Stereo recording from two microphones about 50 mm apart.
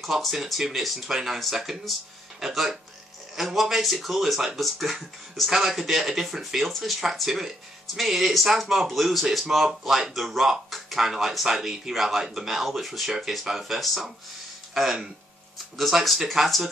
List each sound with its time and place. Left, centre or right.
0.0 s speech: centre